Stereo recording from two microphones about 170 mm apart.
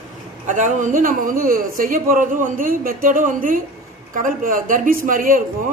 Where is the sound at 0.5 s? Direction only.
50° right (ahead or behind).